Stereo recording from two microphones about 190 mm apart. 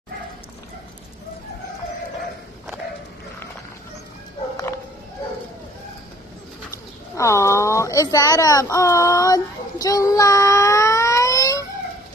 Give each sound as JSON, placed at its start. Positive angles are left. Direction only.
{"t": 7.2, "sound": "speech", "side_deg": 15}